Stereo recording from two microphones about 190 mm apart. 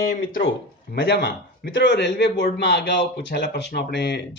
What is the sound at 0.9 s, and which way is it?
Speech, 60° left (ahead or behind).